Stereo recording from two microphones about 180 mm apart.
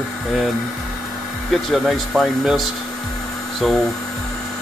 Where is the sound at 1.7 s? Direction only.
Centre (ahead or behind).